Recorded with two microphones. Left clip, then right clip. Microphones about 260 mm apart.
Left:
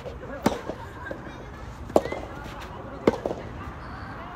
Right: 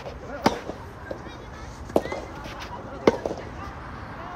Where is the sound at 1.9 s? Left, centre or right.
Right.